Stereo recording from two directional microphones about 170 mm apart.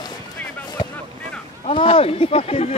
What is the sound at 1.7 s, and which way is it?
Speech, 30° left (ahead or behind).